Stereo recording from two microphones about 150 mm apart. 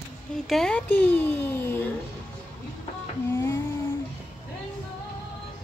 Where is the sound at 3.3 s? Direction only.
20° left (ahead or behind).